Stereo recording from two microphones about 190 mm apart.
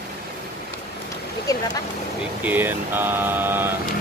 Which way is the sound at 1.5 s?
20° left (ahead or behind).